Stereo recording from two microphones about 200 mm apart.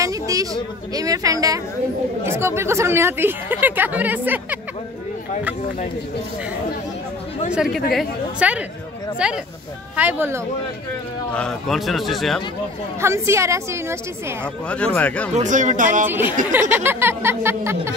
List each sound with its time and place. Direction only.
0.0 s speech: 15° right (ahead or behind)
7.5 s a man's voice: centre (ahead or behind)
11.3 s a man's voice: 5° left (ahead or behind)
13.0 s speech: 15° right (ahead or behind)
15.0 s speech: 5° left (ahead or behind)
15.3 s speech: 40° right (ahead or behind)
16.1 s speech: 10° right (ahead or behind)